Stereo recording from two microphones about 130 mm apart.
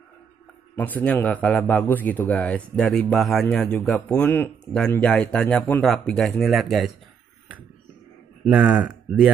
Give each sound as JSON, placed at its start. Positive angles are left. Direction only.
{"t": 0.7, "sound": "a man's voice", "side_deg": 15}
{"t": 4.2, "sound": "a man's voice", "side_deg": 15}
{"t": 8.5, "sound": "speech", "side_deg": -10}